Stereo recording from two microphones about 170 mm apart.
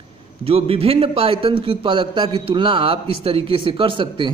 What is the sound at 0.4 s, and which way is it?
A man's voice, 35° right (ahead or behind).